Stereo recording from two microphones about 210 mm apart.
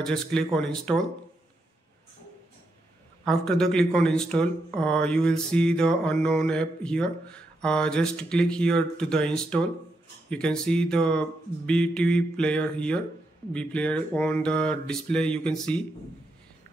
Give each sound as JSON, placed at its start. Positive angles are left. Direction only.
{"t": 0.0, "sound": "speech", "side_deg": 5}
{"t": 3.3, "sound": "speech", "side_deg": 0}